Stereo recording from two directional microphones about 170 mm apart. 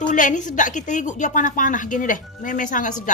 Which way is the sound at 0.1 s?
50° left (ahead or behind).